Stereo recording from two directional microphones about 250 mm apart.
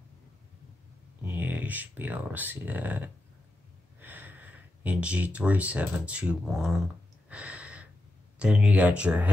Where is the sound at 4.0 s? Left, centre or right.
Centre.